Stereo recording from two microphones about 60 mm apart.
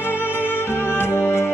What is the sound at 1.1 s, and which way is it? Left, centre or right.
Music, left.